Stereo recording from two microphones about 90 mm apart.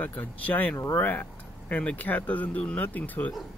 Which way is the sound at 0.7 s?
30° left (ahead or behind).